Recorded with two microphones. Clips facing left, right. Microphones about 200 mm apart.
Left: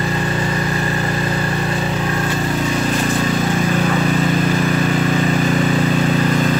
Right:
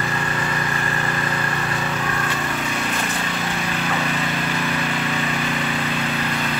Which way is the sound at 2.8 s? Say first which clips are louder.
Left 8 dB; 40° left (ahead or behind).